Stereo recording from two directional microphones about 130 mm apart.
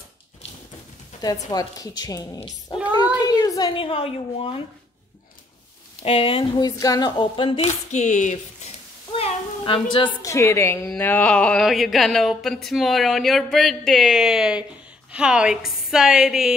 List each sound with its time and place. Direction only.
1.2 s a woman's voice: 30° left (ahead or behind)
2.7 s cat: 30° left (ahead or behind); by 4.6 s 45° left (ahead or behind)
6.0 s speech: 45° left (ahead or behind)
6.6 s speech: 30° left (ahead or behind); by 7.7 s 45° left (ahead or behind)
7.9 s speech: 65° left (ahead or behind)
9.1 s a sound: 45° left (ahead or behind)
10.2 s a woman's voice: 20° left (ahead or behind)
11.0 s a sound: 15° left (ahead or behind)
11.6 s speech: centre (ahead or behind)